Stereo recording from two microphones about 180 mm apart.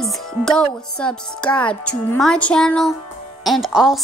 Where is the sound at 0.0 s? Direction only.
Centre (ahead or behind).